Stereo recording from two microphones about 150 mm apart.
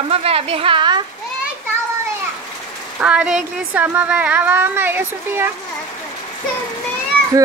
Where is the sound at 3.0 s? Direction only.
10° right (ahead or behind).